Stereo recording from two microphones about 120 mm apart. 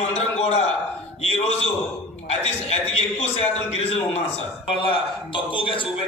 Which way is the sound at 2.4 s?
60° left (ahead or behind).